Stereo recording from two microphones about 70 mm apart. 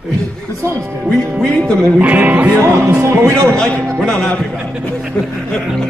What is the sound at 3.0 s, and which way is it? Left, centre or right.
Speech, right.